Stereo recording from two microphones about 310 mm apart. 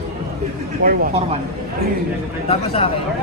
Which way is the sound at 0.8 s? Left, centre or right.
Centre.